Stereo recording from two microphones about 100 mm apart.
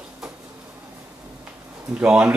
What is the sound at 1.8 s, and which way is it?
Speech, 10° right (ahead or behind).